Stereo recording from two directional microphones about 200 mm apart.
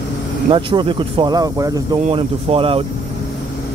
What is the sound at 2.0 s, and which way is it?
Speech, 30° right (ahead or behind).